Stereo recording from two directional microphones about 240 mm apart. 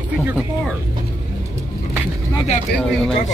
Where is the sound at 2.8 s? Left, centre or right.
Centre.